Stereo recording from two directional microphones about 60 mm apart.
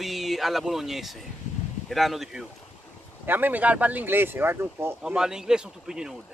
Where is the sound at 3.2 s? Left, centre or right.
Right.